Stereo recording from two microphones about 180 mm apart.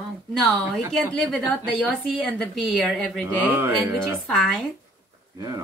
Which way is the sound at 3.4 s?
10° right (ahead or behind).